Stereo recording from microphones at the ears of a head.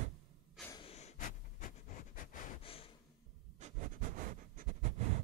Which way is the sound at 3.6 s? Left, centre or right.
Right.